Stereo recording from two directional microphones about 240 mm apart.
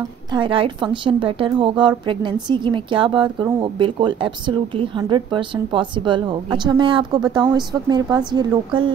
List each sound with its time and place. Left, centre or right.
0.3 s speech: right